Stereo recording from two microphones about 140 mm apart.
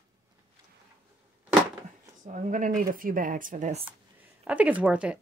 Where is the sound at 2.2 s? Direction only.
65° right (ahead or behind).